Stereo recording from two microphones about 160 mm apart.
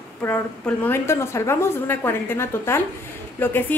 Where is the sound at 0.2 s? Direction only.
10° left (ahead or behind).